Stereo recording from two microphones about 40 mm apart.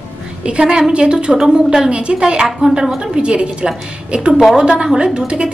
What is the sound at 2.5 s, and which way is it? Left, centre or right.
Speech, centre.